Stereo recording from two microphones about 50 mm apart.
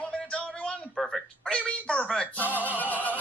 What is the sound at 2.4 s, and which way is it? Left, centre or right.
Music, left.